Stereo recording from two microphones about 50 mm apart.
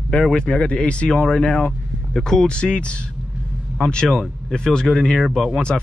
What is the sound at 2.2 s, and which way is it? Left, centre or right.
Speech, centre.